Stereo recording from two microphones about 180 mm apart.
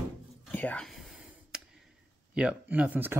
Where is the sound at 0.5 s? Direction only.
5° left (ahead or behind).